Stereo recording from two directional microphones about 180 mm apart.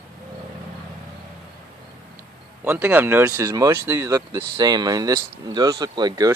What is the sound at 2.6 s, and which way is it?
Speech, 10° right (ahead or behind).